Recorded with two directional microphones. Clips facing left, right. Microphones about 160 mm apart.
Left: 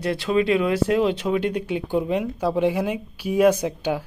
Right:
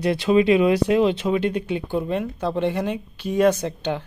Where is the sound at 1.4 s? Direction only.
10° left (ahead or behind).